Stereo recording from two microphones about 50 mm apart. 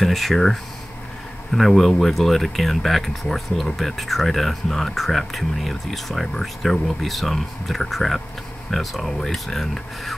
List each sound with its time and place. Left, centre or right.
0.0 s speech: centre